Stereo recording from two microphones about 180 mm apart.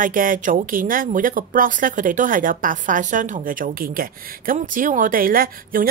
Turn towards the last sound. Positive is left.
turn(degrees=-50)  # may be behind; listen again after turning